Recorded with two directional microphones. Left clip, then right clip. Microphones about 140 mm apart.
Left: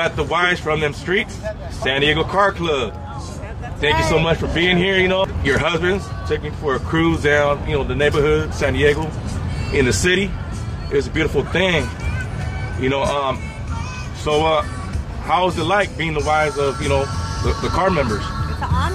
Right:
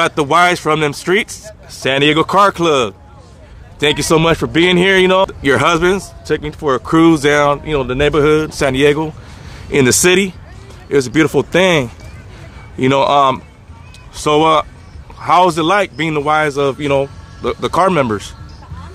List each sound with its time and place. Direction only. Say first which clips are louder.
0.0 s speech: right 7 dB; 50° right (ahead or behind)
12.8 s speech: right 8 dB; 50° right (ahead or behind)